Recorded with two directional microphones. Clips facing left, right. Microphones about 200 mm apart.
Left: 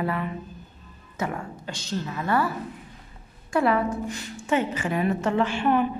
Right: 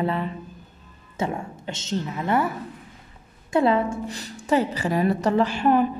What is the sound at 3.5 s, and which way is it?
A woman's voice, 25° right (ahead or behind).